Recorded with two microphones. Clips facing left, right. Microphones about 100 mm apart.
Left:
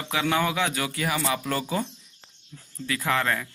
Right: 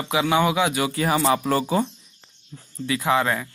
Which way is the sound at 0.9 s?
35° right (ahead or behind).